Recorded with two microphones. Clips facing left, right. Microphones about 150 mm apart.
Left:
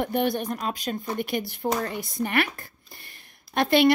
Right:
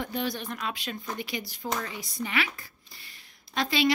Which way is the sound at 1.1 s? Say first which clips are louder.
Left 7 dB; 55° left (ahead or behind).